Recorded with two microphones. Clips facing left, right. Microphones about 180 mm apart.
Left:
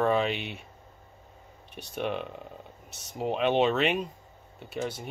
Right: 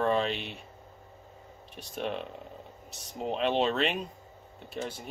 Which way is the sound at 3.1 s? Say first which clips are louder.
Left 3 dB; 5° left (ahead or behind).